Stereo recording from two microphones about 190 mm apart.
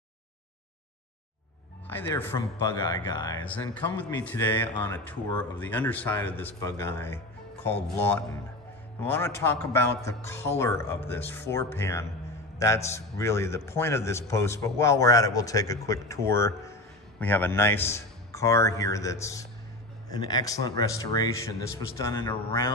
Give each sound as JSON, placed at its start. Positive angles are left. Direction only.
{"t": 1.9, "sound": "a man's voice", "side_deg": 10}
{"t": 3.7, "sound": "a man's voice", "side_deg": 10}